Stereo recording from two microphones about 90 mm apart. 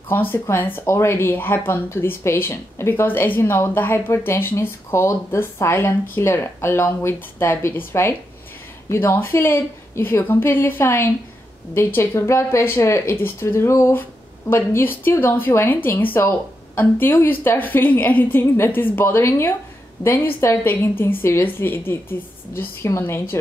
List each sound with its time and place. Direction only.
0.1 s speech: 25° left (ahead or behind)